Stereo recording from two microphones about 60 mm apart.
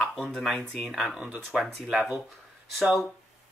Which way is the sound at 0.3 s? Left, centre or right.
Centre.